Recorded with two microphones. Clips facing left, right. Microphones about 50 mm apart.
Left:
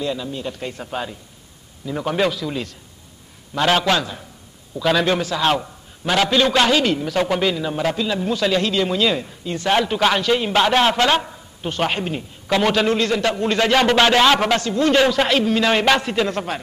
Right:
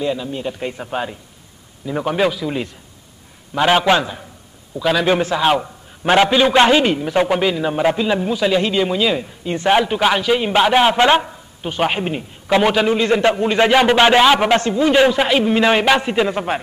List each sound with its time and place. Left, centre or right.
0.0 s a man's voice: centre
4.7 s a man's voice: centre
6.0 s a man's voice: right
6.3 s a man's voice: centre
9.4 s a man's voice: right
11.2 s a man's voice: centre